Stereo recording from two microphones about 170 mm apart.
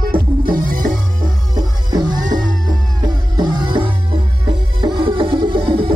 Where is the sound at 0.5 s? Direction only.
55° right (ahead or behind).